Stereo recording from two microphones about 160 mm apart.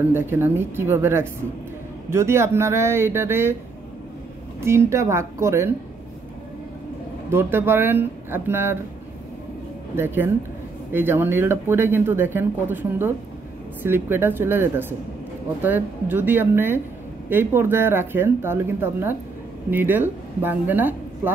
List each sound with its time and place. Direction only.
0.1 s speech: 15° right (ahead or behind)
4.6 s speech: 15° right (ahead or behind)
7.2 s speech: 15° right (ahead or behind)
9.9 s speech: 15° right (ahead or behind)